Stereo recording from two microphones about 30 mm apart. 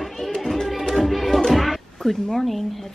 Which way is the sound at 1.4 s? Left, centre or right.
Centre.